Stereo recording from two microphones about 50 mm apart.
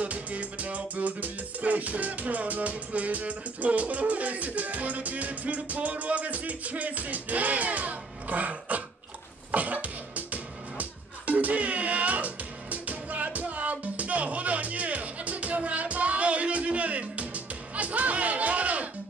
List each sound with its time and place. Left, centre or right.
0.0 s music: right